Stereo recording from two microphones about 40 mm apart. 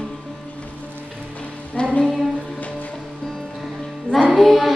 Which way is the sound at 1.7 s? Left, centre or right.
Left.